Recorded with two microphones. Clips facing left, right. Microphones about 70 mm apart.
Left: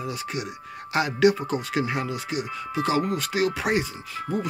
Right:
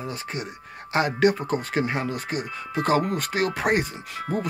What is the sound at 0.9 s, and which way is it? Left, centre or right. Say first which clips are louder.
Speech: even; right.